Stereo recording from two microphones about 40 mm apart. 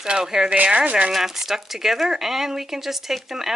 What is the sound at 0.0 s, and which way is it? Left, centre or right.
Speech, centre.